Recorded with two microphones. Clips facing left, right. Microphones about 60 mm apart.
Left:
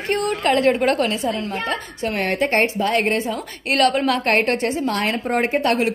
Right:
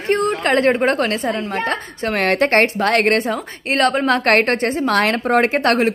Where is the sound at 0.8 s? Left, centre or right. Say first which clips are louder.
Right 1 dB; right.